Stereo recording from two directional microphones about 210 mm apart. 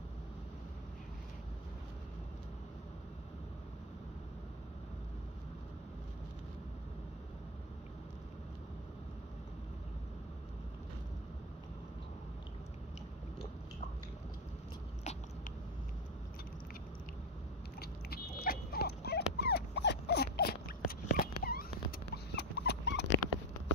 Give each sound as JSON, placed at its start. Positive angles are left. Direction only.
{"t": 17.7, "sound": "dog", "side_deg": 45}
{"t": 21.1, "sound": "a sound", "side_deg": 45}
{"t": 22.1, "sound": "rodents", "side_deg": 55}